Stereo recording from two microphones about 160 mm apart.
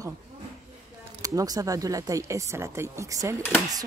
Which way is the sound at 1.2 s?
20° right (ahead or behind).